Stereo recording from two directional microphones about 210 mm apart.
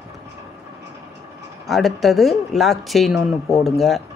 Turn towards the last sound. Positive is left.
turn(degrees=0)  # may be behind; listen again after turning